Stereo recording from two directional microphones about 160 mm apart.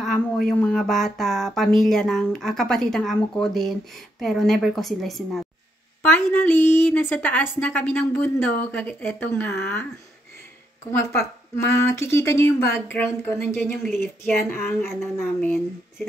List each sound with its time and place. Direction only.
0.0 s speech: 5° left (ahead or behind)
6.0 s a woman's voice: 15° left (ahead or behind)
10.9 s a woman's voice: 20° left (ahead or behind)